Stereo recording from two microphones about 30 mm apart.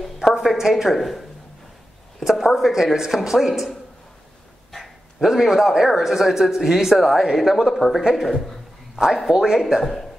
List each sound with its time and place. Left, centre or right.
0.0 s a sound: centre
0.6 s speech: centre
0.8 s speech: centre
2.2 s speech: centre
5.2 s speech: centre
7.7 s speech: centre
8.1 s speech: centre
9.0 s speech: right
9.3 s speech: centre